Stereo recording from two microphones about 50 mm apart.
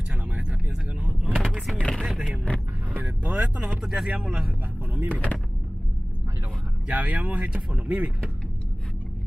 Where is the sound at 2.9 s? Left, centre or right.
Right.